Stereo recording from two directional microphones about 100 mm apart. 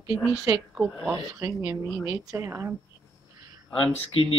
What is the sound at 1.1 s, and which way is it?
Speech, 35° right (ahead or behind).